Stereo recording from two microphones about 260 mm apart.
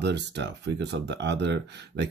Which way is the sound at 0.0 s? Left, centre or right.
Right.